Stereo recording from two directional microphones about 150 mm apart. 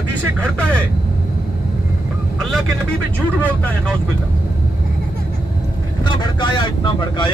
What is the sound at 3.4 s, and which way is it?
Speech, 10° left (ahead or behind).